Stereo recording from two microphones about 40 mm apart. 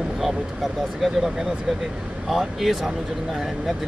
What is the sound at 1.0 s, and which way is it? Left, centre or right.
Speech, centre.